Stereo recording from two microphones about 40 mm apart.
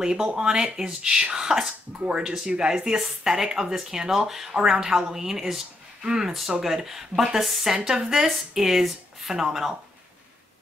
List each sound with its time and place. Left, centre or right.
0.0 s speech: centre
7.7 s speech: centre